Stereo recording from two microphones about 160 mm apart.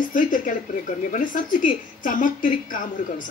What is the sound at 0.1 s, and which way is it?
Speech, 55° left (ahead or behind).